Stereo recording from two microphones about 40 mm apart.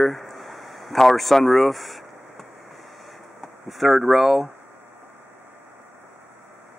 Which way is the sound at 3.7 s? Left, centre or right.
Centre.